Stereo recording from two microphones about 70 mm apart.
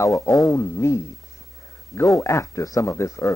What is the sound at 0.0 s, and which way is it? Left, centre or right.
Speech, left.